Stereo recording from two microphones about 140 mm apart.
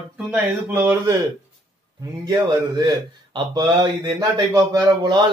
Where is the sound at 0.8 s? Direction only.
15° right (ahead or behind).